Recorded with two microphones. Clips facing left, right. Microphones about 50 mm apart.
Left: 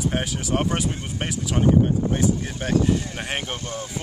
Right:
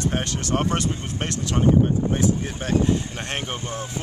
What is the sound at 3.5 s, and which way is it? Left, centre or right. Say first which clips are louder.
Speech: right 1 dB; right.